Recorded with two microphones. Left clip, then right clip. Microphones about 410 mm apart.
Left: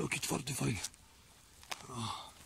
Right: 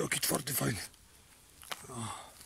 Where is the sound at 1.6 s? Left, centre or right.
Centre.